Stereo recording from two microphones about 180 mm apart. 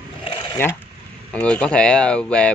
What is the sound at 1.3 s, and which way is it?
Speech, 5° left (ahead or behind).